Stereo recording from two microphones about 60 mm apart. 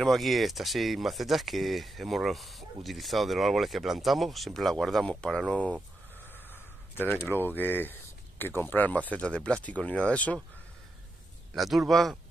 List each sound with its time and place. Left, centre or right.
0.0 s speech: centre
5.5 s speech: left
6.5 s speech: left
11.5 s speech: centre